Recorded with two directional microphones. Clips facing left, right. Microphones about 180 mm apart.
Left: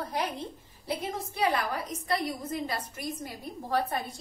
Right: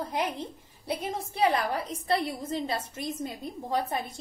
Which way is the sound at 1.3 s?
30° right (ahead or behind).